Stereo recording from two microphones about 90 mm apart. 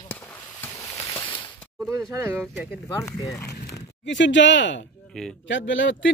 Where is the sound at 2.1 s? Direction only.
25° right (ahead or behind).